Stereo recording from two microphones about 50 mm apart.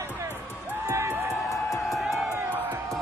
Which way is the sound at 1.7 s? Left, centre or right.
Centre.